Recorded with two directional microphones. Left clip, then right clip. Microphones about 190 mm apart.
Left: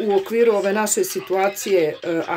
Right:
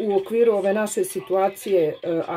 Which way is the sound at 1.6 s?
25° left (ahead or behind).